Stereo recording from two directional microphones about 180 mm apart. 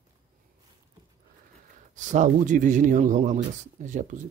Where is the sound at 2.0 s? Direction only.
45° right (ahead or behind).